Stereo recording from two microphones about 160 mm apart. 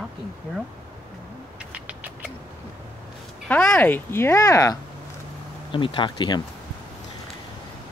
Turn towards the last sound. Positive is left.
turn(degrees=30)  # may be behind; listen again after turning